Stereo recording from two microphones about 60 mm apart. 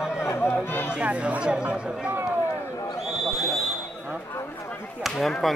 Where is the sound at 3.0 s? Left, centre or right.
Centre.